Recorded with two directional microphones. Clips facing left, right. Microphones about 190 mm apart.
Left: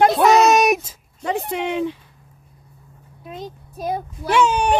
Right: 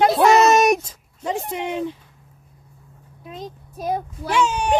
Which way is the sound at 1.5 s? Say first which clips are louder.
Left 3 dB; 75° left (ahead or behind).